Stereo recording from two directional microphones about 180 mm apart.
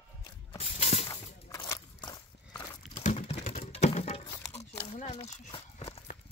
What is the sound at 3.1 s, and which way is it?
Typing, 35° left (ahead or behind).